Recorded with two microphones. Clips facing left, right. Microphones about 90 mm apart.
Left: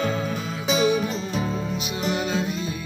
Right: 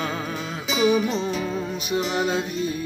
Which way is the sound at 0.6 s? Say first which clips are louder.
Right 1 dB; 45° left (ahead or behind).